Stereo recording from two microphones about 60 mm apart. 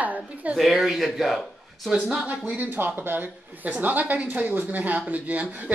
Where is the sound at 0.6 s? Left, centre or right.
Centre.